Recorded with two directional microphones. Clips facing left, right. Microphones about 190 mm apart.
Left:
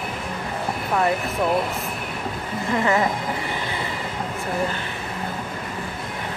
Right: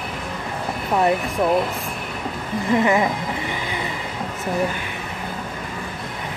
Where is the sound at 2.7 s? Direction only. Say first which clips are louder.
Right 2 dB; 20° right (ahead or behind).